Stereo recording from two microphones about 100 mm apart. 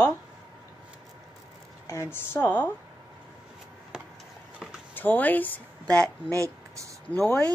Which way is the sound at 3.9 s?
5° right (ahead or behind).